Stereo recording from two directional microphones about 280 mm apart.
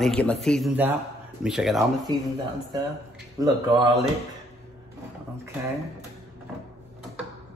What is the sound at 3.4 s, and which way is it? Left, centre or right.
Speech, centre.